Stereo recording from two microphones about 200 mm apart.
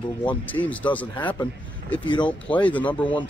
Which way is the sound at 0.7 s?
5° left (ahead or behind).